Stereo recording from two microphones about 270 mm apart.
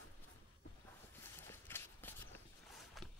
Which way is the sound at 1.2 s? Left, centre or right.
Centre.